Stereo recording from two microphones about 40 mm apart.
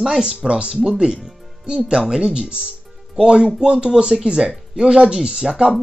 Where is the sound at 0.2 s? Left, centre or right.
Centre.